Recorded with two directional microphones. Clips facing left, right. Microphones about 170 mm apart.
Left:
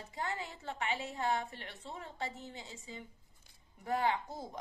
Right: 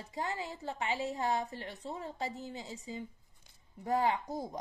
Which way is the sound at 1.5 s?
40° right (ahead or behind).